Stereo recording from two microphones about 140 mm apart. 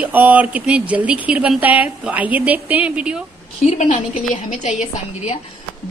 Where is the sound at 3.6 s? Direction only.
55° left (ahead or behind).